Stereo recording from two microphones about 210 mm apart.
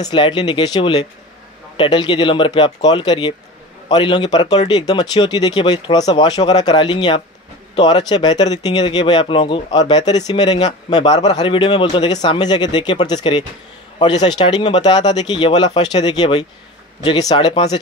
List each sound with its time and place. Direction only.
0.0 s speech: 25° left (ahead or behind)